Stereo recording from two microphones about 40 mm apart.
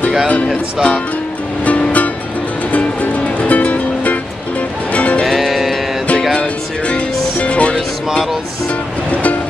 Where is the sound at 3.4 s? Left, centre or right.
Left.